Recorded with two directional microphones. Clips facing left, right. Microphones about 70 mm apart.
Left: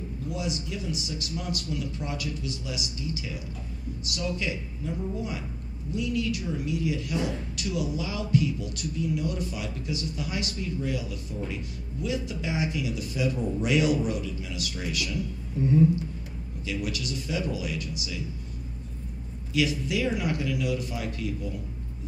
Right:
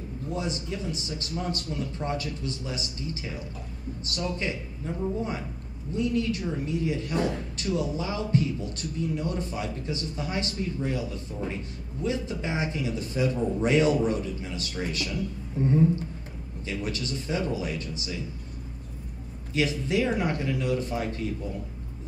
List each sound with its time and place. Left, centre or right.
0.3 s speech: right
5.9 s speech: right
19.5 s speech: right